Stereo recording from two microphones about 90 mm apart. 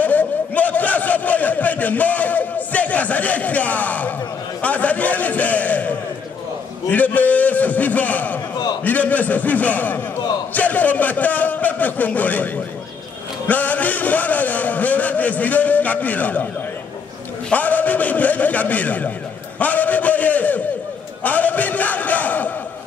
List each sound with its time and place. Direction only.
0.0 s a sound: 20° left (ahead or behind)
4.6 s a man's voice: 15° left (ahead or behind)
13.5 s a man's voice: 20° left (ahead or behind)
17.5 s a man's voice: 20° left (ahead or behind)